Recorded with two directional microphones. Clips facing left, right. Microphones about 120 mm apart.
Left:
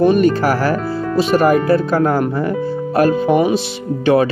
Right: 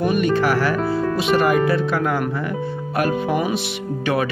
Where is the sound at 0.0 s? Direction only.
35° left (ahead or behind).